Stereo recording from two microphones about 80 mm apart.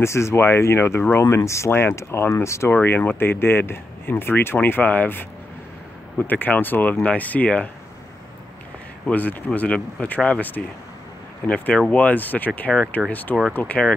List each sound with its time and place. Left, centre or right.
0.0 s speech: left
1.4 s speech: left
2.7 s speech: left
9.1 s speech: left